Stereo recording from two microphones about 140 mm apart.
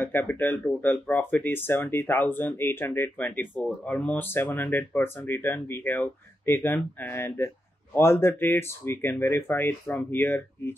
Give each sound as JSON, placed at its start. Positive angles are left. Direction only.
{"t": 0.0, "sound": "speech", "side_deg": 15}